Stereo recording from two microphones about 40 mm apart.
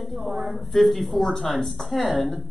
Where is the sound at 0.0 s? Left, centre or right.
Centre.